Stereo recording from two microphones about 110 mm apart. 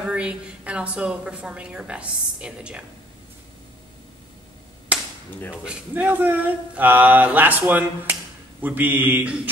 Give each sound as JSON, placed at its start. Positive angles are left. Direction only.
{"t": 0.0, "sound": "speech", "side_deg": -10}
{"t": 4.9, "sound": "cap gun", "side_deg": -10}
{"t": 5.7, "sound": "speech", "side_deg": -15}